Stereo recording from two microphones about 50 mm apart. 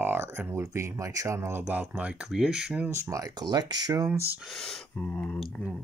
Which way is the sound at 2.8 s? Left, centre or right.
Right.